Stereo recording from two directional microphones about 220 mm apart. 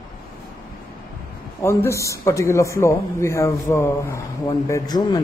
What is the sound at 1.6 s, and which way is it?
Speech, 15° left (ahead or behind).